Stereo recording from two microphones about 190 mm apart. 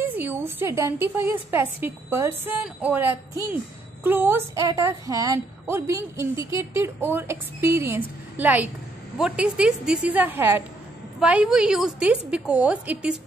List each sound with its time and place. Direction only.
0.0 s a woman's voice: 10° right (ahead or behind)